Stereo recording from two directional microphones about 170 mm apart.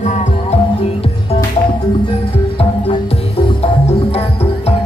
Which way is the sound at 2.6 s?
35° left (ahead or behind).